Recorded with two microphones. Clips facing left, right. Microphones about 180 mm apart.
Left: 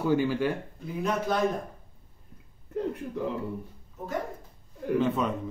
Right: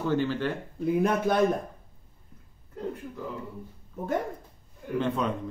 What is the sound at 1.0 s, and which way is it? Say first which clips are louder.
Speech: even; 55° right (ahead or behind).